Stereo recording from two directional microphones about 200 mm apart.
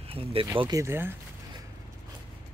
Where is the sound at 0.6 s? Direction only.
15° right (ahead or behind).